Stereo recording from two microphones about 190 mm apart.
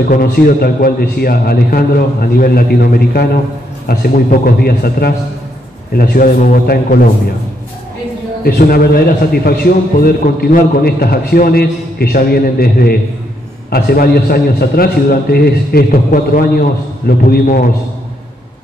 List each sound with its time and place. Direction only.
0.1 s a man's voice: 50° left (ahead or behind)
8.5 s a man's voice: 55° left (ahead or behind)